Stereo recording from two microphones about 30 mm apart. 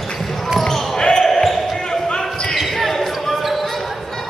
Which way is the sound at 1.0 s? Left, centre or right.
Centre.